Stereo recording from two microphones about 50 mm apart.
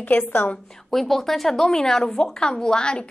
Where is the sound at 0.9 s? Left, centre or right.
Centre.